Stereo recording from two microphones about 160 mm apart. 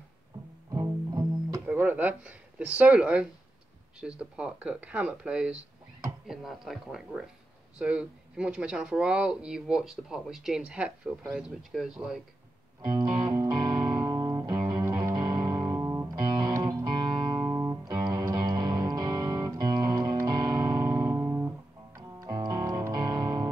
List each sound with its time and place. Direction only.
0.7 s music: 20° right (ahead or behind)
4.0 s speech: 5° right (ahead or behind)
12.8 s music: 25° right (ahead or behind)